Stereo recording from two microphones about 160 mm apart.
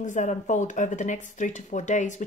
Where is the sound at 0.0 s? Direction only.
50° left (ahead or behind).